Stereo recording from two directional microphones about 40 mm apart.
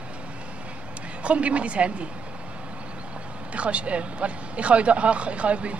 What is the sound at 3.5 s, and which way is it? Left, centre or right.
Speech, right.